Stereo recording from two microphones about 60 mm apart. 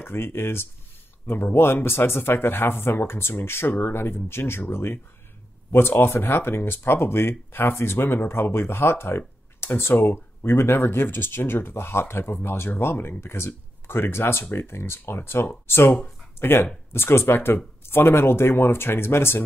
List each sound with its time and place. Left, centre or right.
0.0 s speech: left